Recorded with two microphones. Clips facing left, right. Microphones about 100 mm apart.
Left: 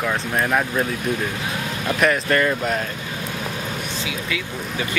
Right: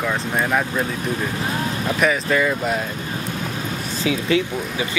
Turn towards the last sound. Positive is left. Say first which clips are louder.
# right 8 dB
turn(degrees=-30)  # may be behind; listen again after turning